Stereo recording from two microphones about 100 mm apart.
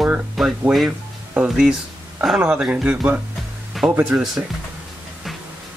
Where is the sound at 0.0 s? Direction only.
5° right (ahead or behind).